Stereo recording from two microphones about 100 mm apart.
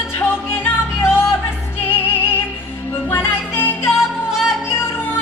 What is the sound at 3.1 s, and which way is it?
Music, 25° left (ahead or behind).